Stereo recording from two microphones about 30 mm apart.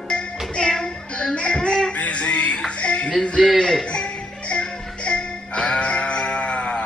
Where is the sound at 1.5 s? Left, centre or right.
Left.